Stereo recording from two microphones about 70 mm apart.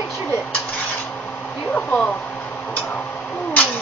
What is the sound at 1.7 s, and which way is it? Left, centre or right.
Speech, left.